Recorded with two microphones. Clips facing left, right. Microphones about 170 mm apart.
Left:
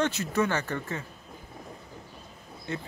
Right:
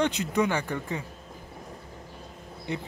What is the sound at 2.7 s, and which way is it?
Speech, 15° right (ahead or behind).